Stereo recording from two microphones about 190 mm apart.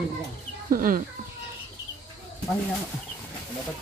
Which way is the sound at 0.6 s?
50° right (ahead or behind).